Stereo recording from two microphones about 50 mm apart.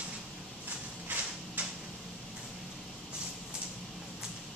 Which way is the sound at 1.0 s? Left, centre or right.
Right.